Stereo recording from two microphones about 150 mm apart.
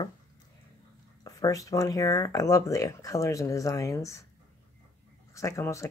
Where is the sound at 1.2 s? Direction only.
25° left (ahead or behind).